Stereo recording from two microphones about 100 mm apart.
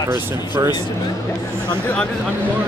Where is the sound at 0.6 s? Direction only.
40° right (ahead or behind).